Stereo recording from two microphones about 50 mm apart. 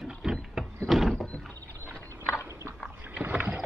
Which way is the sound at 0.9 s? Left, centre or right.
Centre.